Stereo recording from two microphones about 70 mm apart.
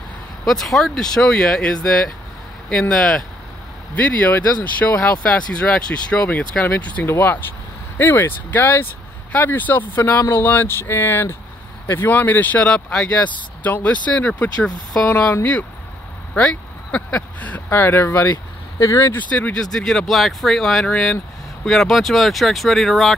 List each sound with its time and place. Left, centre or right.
0.5 s speech: centre
3.9 s speech: left
16.3 s speech: centre
17.6 s speech: left
19.1 s speech: left; by 20.9 s centre
20.9 s speech: centre
21.6 s speech: centre